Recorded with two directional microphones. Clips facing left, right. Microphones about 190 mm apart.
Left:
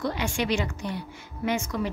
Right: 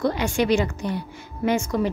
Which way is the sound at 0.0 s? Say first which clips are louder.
Right 6 dB; 45° right (ahead or behind).